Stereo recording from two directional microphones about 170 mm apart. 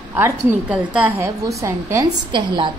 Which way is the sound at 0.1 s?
10° right (ahead or behind).